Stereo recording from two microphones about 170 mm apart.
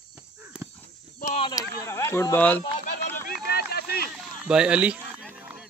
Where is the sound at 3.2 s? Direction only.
65° left (ahead or behind).